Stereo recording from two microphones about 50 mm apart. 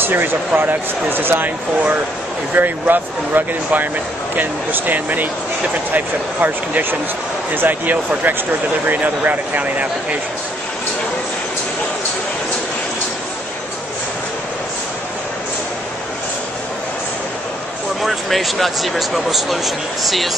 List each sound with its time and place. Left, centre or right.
0.0 s speech: right
2.5 s speech: right
18.0 s speech: centre